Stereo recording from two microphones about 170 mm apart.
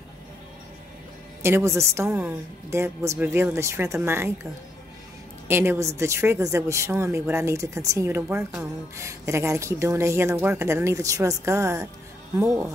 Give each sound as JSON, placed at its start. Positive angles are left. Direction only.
{"t": 1.4, "sound": "a woman's voice", "side_deg": -15}
{"t": 5.5, "sound": "a woman's voice", "side_deg": -15}